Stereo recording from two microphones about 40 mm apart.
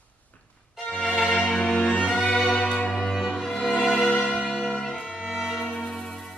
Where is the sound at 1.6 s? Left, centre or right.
Left.